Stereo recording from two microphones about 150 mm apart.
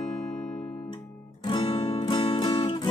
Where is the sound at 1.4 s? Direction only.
30° left (ahead or behind).